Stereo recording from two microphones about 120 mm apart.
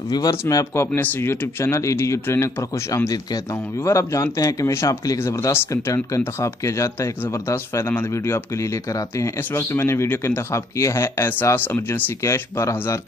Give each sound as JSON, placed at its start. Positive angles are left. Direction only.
{"t": 0.1, "sound": "speech", "side_deg": 30}